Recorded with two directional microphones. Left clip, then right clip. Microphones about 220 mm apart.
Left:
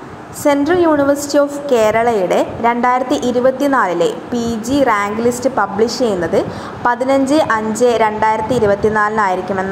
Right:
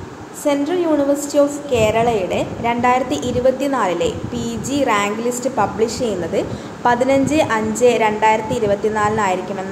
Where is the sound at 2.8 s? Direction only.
15° left (ahead or behind).